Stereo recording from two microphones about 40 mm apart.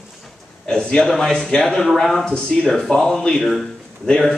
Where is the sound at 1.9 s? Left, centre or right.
Centre.